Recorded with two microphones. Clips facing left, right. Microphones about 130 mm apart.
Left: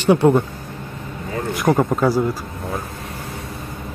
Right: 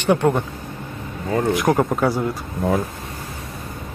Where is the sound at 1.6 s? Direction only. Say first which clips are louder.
Left 1 dB; centre (ahead or behind).